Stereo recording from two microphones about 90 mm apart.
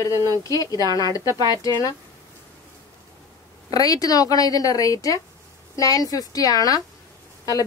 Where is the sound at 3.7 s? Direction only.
45° left (ahead or behind).